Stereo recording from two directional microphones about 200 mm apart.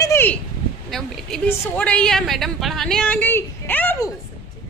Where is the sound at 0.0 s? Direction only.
10° left (ahead or behind).